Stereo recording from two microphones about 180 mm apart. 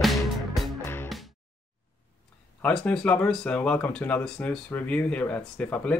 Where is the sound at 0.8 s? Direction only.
10° left (ahead or behind).